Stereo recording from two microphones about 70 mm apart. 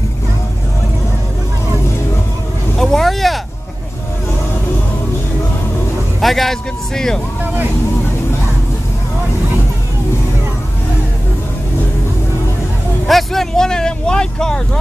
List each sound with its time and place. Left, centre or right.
2.8 s vehicle: centre
6.2 s a man's voice: centre
13.0 s vehicle: centre